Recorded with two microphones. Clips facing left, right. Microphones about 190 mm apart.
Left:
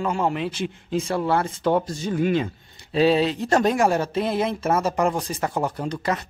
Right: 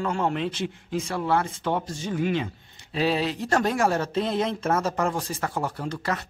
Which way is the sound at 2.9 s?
25° left (ahead or behind).